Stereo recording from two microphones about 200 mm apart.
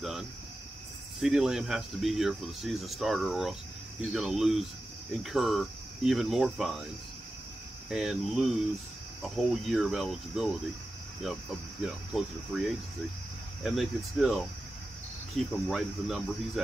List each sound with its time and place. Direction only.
0.0 s a sound: centre (ahead or behind)
1.2 s speech: 5° right (ahead or behind)
7.9 s speech: centre (ahead or behind)